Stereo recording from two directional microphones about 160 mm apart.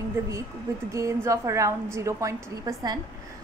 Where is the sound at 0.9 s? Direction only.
20° right (ahead or behind).